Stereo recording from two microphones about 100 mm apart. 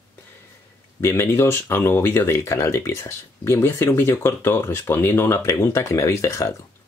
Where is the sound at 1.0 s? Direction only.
25° left (ahead or behind).